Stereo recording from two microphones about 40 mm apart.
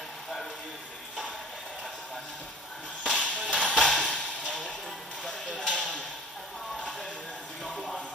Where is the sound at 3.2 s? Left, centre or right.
Left.